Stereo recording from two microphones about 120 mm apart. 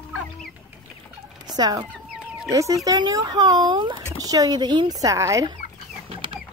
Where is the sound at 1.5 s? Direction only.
35° right (ahead or behind).